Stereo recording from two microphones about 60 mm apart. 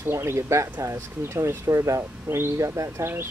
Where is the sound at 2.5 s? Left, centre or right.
Right.